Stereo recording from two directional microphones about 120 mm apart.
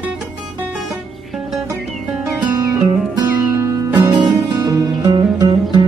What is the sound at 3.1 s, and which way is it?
Music, 25° right (ahead or behind).